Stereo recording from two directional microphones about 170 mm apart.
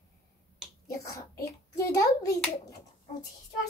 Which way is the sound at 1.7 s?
20° left (ahead or behind).